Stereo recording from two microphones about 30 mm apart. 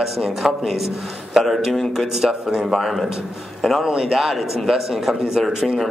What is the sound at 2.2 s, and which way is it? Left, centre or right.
Speech, right.